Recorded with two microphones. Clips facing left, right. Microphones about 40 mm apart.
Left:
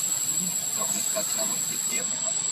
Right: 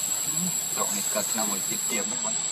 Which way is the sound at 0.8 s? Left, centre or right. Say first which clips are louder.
Right 5 dB; right.